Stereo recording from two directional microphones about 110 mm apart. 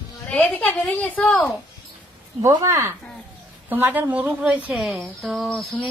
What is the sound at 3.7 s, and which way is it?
A woman's voice, 15° right (ahead or behind).